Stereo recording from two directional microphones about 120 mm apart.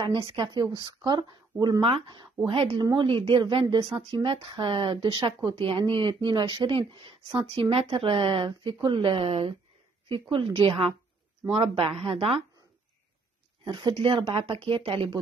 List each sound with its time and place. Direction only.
0.0 s a woman's voice: 40° right (ahead or behind)
2.7 s a woman's voice: 30° right (ahead or behind)
3.0 s a woman's voice: 45° right (ahead or behind)
5.7 s a woman's voice: 50° right (ahead or behind)
13.7 s speech: 45° right (ahead or behind)